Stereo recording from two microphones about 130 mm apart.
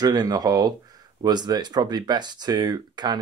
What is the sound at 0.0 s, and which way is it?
Speech, 30° right (ahead or behind).